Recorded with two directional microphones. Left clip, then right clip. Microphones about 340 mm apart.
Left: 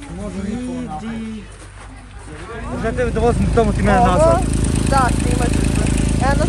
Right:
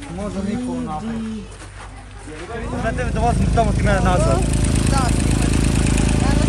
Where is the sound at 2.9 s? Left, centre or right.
Left.